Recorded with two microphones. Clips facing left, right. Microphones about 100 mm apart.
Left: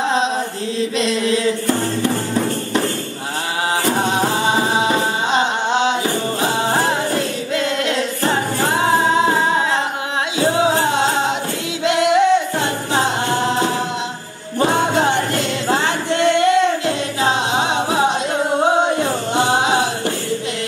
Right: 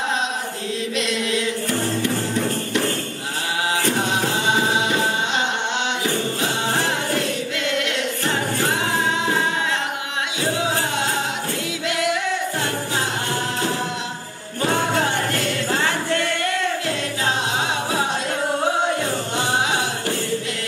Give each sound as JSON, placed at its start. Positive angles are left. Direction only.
{"t": 1.2, "sound": "music", "side_deg": 35}
{"t": 4.0, "sound": "music", "side_deg": 35}
{"t": 8.2, "sound": "music", "side_deg": 35}
{"t": 10.7, "sound": "music", "side_deg": 30}
{"t": 11.8, "sound": "singing", "side_deg": 25}
{"t": 14.6, "sound": "music", "side_deg": 20}
{"t": 19.3, "sound": "a sound", "side_deg": 20}